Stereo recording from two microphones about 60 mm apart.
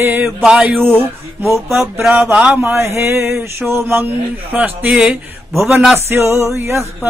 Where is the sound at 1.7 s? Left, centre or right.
Right.